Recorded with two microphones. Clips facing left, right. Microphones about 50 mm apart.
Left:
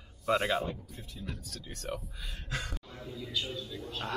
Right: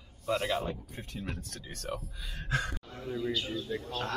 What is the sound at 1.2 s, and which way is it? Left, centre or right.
Speech, right.